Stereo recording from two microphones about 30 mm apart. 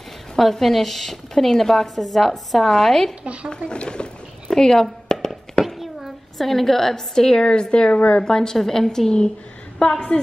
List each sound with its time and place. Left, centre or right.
0.4 s a woman's voice: centre
3.4 s a woman's voice: left
4.5 s speech: centre
4.8 s a sound: centre
5.8 s a sound: centre
6.4 s a woman's voice: centre
7.2 s a woman's voice: left
8.1 s a woman's voice: left
9.9 s speech: left